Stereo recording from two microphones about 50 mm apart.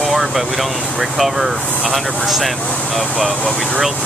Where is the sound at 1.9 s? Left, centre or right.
Centre.